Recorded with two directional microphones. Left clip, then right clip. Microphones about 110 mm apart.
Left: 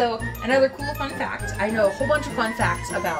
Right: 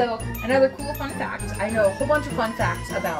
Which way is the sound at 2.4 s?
35° left (ahead or behind).